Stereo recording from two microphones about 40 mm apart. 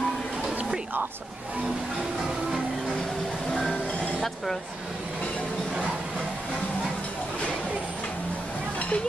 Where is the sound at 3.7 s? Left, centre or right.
Left.